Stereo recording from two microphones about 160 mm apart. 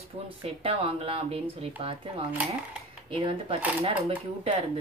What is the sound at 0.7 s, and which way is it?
Speech, 35° right (ahead or behind).